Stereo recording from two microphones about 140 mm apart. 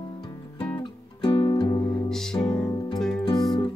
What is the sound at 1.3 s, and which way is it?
Music, 35° left (ahead or behind).